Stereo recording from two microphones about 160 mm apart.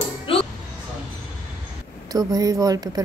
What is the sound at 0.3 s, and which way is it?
Music, 35° left (ahead or behind).